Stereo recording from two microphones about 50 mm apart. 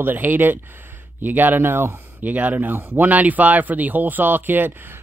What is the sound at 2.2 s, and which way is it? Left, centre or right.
Speech, right.